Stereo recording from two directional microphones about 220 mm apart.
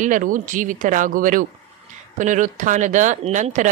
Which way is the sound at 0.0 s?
35° right (ahead or behind).